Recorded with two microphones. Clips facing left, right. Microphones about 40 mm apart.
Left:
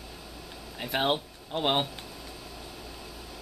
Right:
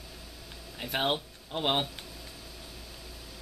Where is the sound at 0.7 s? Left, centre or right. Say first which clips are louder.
Left 2 dB; centre.